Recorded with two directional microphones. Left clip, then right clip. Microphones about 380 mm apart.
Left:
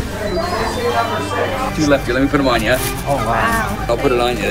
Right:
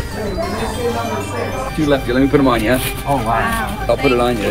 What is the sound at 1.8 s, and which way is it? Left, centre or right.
Speech, centre.